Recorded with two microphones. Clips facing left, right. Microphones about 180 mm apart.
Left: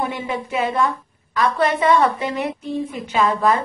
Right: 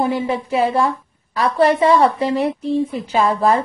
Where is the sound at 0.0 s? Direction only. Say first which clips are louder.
Right 5 dB; 30° right (ahead or behind).